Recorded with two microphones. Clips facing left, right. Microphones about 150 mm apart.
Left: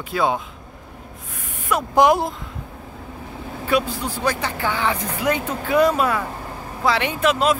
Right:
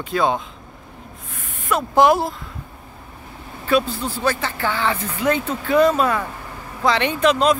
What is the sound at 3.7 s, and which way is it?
Speech, 15° left (ahead or behind).